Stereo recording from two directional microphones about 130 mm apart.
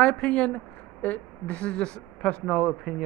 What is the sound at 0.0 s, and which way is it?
Speech, 10° left (ahead or behind).